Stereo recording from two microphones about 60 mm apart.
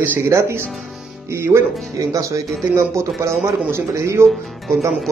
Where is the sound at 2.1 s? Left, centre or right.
Right.